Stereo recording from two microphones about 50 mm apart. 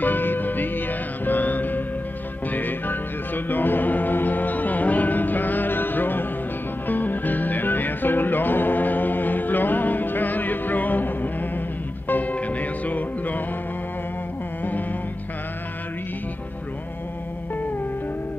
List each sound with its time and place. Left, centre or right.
0.0 s music: left
12.1 s music: left
14.6 s music: left